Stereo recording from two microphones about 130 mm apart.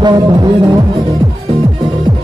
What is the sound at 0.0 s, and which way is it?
Music, 30° right (ahead or behind).